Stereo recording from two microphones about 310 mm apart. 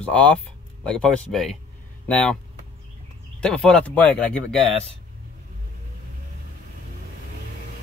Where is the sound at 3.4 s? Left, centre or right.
Centre.